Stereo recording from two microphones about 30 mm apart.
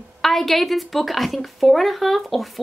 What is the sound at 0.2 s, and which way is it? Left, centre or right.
A woman's voice, centre.